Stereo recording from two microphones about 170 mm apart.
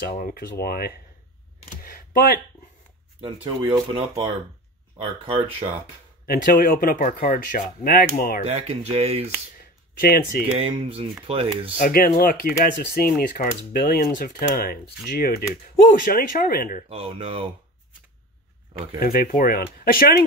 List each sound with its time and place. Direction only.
0.0 s speech: 55° left (ahead or behind)
1.9 s a sound: 60° left (ahead or behind)
3.2 s speech: 30° right (ahead or behind)
6.2 s speech: 65° left (ahead or behind)
8.5 s speech: 35° right (ahead or behind)
9.9 s speech: 60° left (ahead or behind)
10.6 s speech: 35° right (ahead or behind)
11.7 s speech: 50° left (ahead or behind)
16.9 s speech: 35° right (ahead or behind)
18.9 s speech: 60° left (ahead or behind)